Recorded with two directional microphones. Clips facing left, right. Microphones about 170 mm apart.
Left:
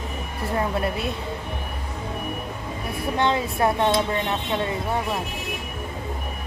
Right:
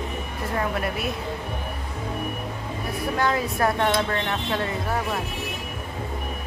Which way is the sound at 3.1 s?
25° left (ahead or behind).